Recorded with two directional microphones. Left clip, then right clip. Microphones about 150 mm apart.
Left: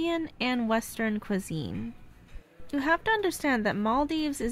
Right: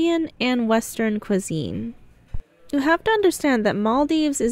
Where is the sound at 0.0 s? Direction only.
35° right (ahead or behind).